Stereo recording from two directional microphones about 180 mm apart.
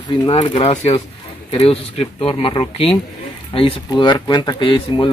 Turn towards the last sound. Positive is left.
turn(degrees=25)  # may be behind; listen again after turning